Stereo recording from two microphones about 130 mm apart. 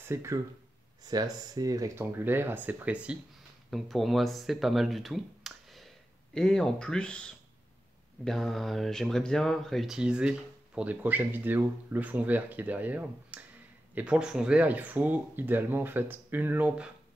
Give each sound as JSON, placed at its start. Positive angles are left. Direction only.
{"t": 0.0, "sound": "speech", "side_deg": -20}
{"t": 2.0, "sound": "speech", "side_deg": -15}